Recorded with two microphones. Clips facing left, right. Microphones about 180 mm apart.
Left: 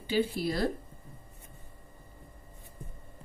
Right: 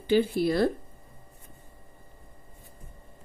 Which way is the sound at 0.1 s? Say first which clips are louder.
Right 6 dB; 55° right (ahead or behind).